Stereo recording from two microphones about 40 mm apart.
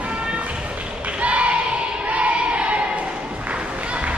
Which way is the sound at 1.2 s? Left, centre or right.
Right.